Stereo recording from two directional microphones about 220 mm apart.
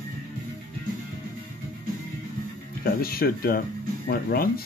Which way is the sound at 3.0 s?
45° left (ahead or behind).